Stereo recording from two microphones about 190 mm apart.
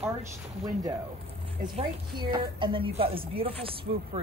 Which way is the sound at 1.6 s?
25° right (ahead or behind).